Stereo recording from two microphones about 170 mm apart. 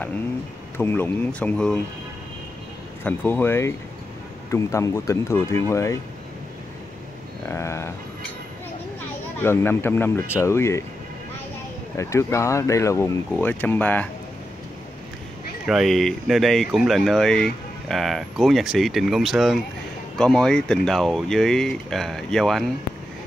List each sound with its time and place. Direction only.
0.7 s speech: 10° left (ahead or behind)
3.0 s speech: 15° left (ahead or behind)
7.4 s speech: 15° left (ahead or behind)
9.4 s speech: 15° left (ahead or behind)
12.0 s speech: 15° left (ahead or behind)
15.6 s speech: centre (ahead or behind)